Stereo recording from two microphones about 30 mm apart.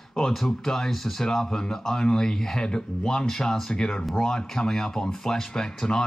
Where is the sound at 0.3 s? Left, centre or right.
Centre.